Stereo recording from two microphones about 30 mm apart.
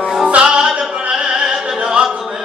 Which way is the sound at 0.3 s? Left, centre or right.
Right.